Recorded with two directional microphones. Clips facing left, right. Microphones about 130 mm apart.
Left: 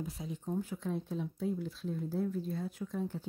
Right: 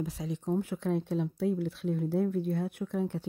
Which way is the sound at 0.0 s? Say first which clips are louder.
Right 6 dB; 90° right.